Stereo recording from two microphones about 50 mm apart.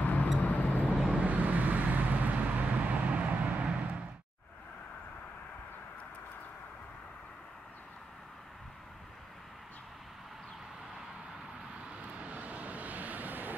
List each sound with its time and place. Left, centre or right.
0.0 s vehicle: left
1.1 s vehicle: right
12.0 s vehicle: right